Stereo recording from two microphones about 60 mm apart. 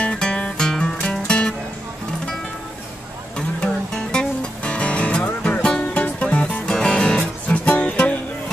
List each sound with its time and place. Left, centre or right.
0.0 s music: centre
3.3 s music: centre